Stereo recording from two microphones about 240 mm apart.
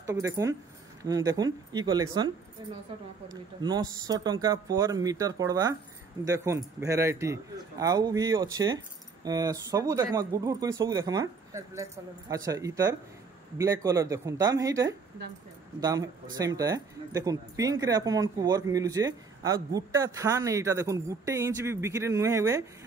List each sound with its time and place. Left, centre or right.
0.0 s speech: centre